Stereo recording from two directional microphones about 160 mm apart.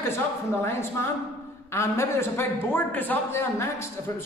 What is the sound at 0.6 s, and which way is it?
A man's voice, 15° left (ahead or behind).